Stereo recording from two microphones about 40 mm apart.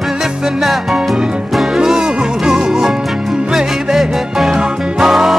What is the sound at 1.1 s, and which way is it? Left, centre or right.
Music, right.